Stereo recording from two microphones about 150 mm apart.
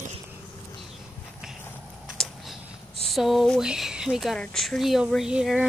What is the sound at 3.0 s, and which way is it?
Speech, centre (ahead or behind).